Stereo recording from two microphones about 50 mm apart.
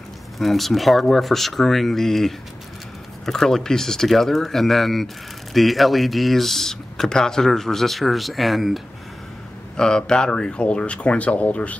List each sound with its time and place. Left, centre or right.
0.4 s speech: centre
9.8 s speech: centre